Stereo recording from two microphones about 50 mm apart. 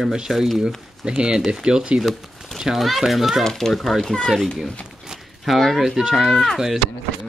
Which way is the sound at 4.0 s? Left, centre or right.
Centre.